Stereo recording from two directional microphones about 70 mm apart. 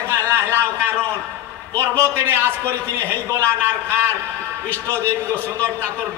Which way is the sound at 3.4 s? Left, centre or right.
Right.